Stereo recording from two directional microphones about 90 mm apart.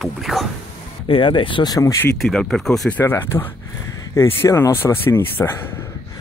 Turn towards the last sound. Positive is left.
turn(degrees=25)  # may be behind; listen again after turning